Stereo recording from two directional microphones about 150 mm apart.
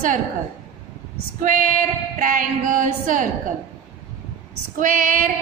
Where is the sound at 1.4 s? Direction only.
60° right (ahead or behind).